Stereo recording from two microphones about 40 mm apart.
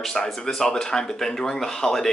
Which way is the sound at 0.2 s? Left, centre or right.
Centre.